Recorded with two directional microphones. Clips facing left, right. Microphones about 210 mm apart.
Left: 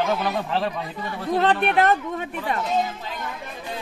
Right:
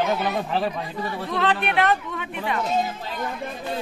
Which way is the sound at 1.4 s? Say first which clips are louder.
Left 3 dB; 40° left (ahead or behind).